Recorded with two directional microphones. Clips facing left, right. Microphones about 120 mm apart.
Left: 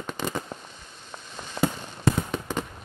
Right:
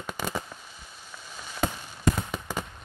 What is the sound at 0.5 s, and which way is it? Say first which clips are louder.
Fireworks: left 7 dB; 25° left (ahead or behind).